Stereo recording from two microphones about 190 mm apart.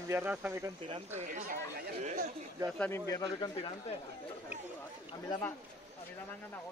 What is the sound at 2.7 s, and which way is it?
Speech, 10° left (ahead or behind).